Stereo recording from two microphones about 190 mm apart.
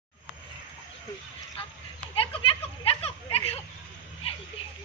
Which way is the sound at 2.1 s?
30° left (ahead or behind).